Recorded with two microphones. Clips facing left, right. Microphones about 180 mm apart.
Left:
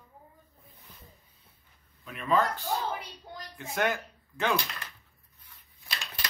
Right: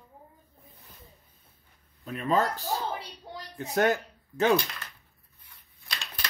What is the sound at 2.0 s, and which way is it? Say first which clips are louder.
Speech: right 1 dB; 40° right (ahead or behind).